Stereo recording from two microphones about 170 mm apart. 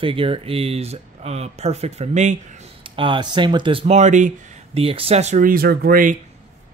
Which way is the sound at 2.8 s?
30° right (ahead or behind).